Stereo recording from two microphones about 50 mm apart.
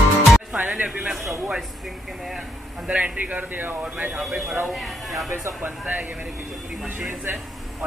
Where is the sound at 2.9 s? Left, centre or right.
Right.